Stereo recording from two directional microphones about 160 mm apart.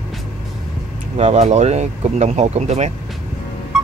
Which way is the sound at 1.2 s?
45° right (ahead or behind).